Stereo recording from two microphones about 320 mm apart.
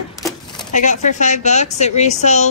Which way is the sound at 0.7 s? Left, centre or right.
Left.